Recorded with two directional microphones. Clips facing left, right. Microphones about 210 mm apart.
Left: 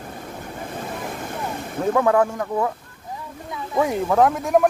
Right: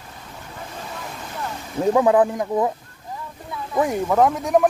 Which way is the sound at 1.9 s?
15° right (ahead or behind).